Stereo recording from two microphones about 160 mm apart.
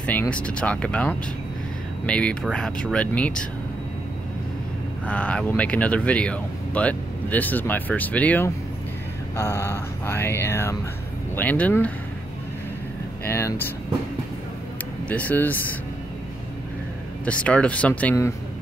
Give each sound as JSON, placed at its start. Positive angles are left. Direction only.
{"t": 0.0, "sound": "speech", "side_deg": 10}
{"t": 5.0, "sound": "speech", "side_deg": 5}
{"t": 13.2, "sound": "speech", "side_deg": 15}
{"t": 15.0, "sound": "speech", "side_deg": 10}
{"t": 17.2, "sound": "speech", "side_deg": 10}